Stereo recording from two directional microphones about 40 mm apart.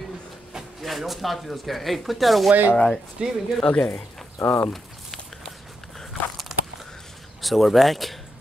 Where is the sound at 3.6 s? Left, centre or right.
Left.